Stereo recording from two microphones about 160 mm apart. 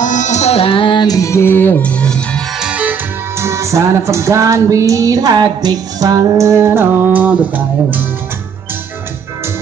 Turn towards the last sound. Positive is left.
turn(degrees=-10)  # may be behind; listen again after turning